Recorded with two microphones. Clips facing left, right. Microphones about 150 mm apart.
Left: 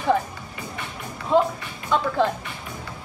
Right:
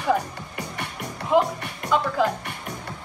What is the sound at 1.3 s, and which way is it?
A woman's voice, 10° right (ahead or behind).